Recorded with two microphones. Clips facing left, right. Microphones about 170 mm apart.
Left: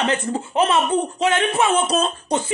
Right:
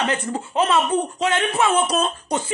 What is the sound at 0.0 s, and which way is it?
Speech, 25° left (ahead or behind).